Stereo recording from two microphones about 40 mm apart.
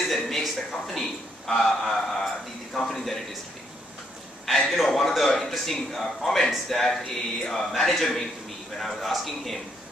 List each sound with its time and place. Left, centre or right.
0.0 s a man's voice: centre
4.5 s a man's voice: centre